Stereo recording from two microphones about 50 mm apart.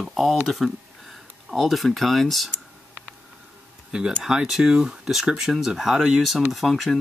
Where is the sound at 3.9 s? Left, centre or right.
Centre.